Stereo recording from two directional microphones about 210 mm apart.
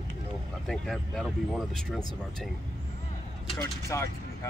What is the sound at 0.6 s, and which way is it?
Speech, centre (ahead or behind).